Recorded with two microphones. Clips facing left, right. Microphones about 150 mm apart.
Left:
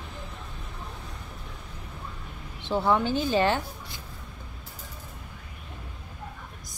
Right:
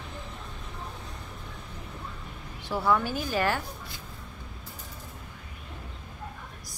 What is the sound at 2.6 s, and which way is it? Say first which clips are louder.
A woman's voice: left 2 dB; 25° left (ahead or behind).